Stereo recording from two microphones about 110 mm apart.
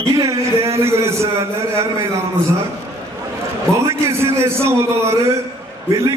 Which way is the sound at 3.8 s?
25° right (ahead or behind).